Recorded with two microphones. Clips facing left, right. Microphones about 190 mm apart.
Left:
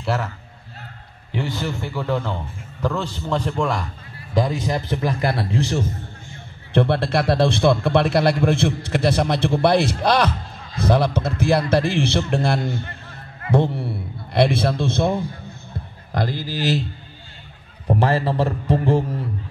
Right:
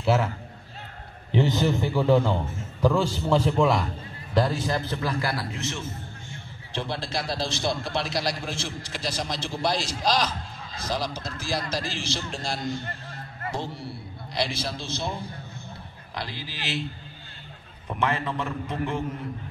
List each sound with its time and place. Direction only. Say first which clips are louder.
0.0 s a man's voice: right 1 dB; 5° right (ahead or behind)
1.3 s a man's voice: right 3 dB; 20° right (ahead or behind)
4.3 s a man's voice: left 3 dB; 15° left (ahead or behind); by 5.9 s 35° left (ahead or behind)
6.7 s a man's voice: left 12 dB; 60° left (ahead or behind)
16.1 s a man's voice: left 11 dB; 45° left (ahead or behind)
17.8 s a man's voice: left 8 dB; 35° left (ahead or behind)